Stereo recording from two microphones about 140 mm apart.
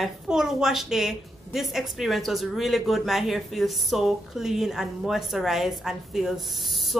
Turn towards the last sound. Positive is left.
turn(degrees=0)  # may be behind; listen again after turning